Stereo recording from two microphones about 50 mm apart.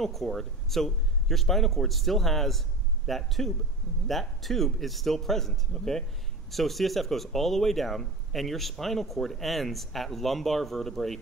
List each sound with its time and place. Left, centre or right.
0.0 s speech: centre